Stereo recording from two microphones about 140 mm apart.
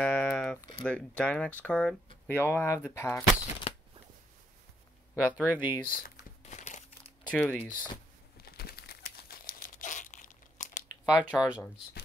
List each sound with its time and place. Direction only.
0.0 s a sound: 5° left (ahead or behind)
0.8 s speech: 10° left (ahead or behind)
3.7 s shuffling cards: 45° left (ahead or behind)
5.1 s speech: 10° right (ahead or behind)
5.7 s speech: 35° left (ahead or behind)
6.4 s crumpling: 55° left (ahead or behind)
7.2 s speech: 10° left (ahead or behind)
8.4 s a sound: 90° left
9.5 s crumpling: 80° left
11.1 s speech: 25° left (ahead or behind)